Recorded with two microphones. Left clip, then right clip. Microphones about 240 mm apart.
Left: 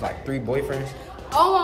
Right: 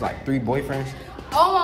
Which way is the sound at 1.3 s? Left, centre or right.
Centre.